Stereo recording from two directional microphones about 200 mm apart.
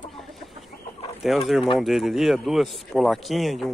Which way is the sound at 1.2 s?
Centre (ahead or behind).